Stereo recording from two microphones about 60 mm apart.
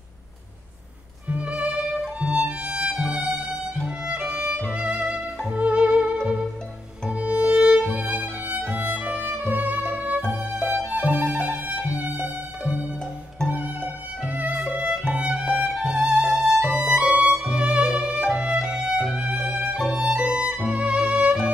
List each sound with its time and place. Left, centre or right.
1.3 s music: right
14.2 s violin: right
14.7 s music: right
19.9 s violin: right